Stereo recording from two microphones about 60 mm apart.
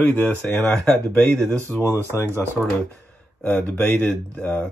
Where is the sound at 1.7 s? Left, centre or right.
Left.